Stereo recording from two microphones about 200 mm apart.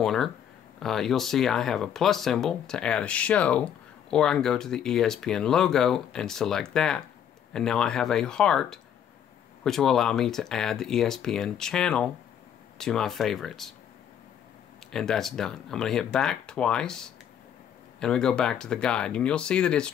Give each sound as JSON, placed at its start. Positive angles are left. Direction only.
{"t": 0.0, "sound": "speech", "side_deg": 0}
{"t": 14.9, "sound": "speech", "side_deg": 0}
{"t": 18.0, "sound": "speech", "side_deg": 5}